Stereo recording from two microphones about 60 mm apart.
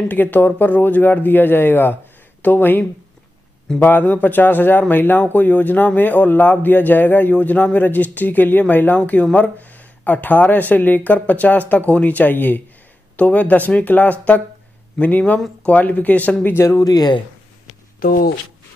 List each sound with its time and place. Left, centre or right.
0.1 s speech: left
3.8 s a man's voice: left
16.5 s speech: left